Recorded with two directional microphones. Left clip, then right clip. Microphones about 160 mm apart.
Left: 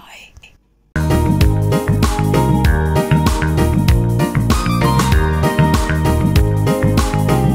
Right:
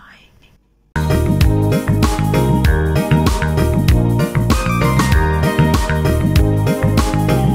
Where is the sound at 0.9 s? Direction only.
Centre (ahead or behind).